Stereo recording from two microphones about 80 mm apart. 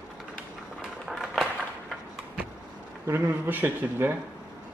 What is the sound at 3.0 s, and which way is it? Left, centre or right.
Speech, right.